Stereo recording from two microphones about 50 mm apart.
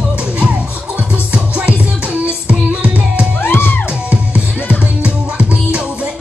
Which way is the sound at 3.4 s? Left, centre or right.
Left.